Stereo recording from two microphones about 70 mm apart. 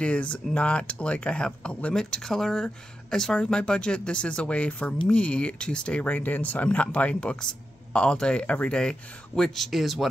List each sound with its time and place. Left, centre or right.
0.0 s speech: centre